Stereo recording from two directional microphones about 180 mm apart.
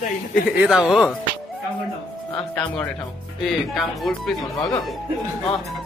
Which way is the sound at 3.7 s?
Centre (ahead or behind).